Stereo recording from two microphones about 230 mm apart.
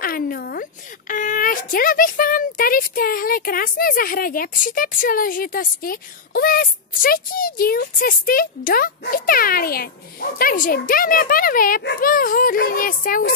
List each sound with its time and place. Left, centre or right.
0.0 s speech: left